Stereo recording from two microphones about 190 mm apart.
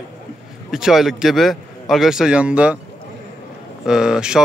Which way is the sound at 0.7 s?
Centre (ahead or behind).